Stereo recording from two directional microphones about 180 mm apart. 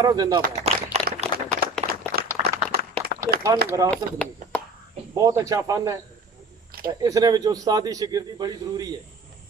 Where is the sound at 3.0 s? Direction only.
60° right (ahead or behind).